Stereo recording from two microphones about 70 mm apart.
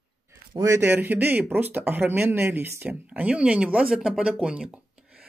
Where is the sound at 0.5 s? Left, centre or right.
Right.